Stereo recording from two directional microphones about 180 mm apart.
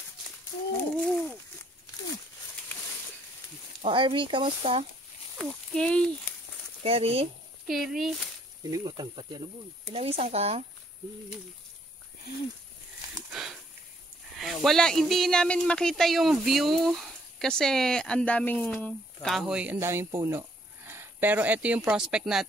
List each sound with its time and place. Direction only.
0.9 s a sound: 5° left (ahead or behind)
3.8 s speech: 30° right (ahead or behind)
5.4 s speech: centre (ahead or behind)
6.8 s speech: 30° right (ahead or behind)
7.6 s speech: centre (ahead or behind)
8.6 s speech: 20° right (ahead or behind)
13.1 s a sound: centre (ahead or behind)
14.3 s speech: centre (ahead or behind)